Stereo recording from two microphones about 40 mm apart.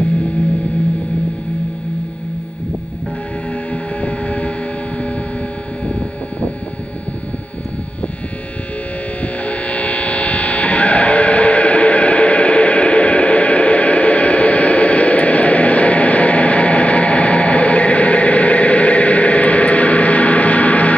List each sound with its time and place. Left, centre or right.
3.7 s music: left
9.2 s mains hum: left